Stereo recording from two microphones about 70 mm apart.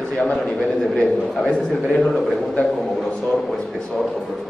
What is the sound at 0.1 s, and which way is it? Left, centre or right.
A man's voice, centre.